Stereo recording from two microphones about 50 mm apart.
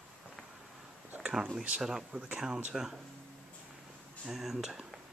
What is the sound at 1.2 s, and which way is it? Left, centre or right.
Speech, centre.